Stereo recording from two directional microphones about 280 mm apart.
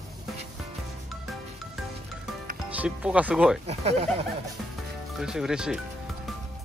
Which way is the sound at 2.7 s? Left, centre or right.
Centre.